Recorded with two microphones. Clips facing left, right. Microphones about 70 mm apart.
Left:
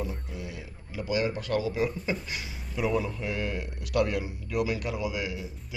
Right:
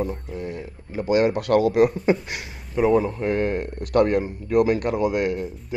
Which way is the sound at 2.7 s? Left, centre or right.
Right.